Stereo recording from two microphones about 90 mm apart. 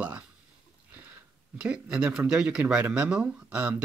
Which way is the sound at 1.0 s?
20° right (ahead or behind).